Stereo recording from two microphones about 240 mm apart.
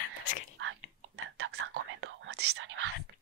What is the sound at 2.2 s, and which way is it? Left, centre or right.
Whispering, right.